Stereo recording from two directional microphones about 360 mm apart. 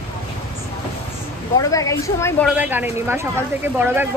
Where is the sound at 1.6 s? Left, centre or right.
Centre.